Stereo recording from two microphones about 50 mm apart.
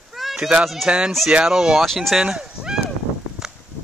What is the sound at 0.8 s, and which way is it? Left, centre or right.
Speech, centre.